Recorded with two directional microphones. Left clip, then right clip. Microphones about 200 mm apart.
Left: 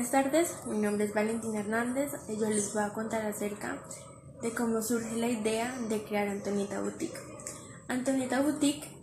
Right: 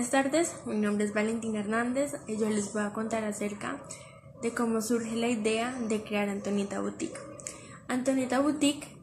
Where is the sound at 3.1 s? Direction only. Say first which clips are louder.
Right 1 dB; 20° right (ahead or behind).